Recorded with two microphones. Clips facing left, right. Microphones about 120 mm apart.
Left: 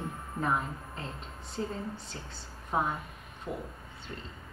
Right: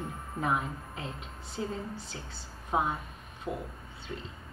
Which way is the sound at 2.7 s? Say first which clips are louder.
Right 1 dB; 15° right (ahead or behind).